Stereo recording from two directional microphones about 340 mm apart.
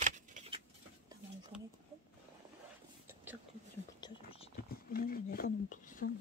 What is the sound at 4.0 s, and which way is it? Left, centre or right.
Whispering, centre.